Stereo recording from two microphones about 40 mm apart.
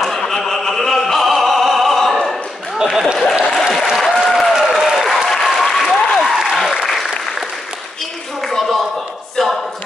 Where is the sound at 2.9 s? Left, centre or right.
Centre.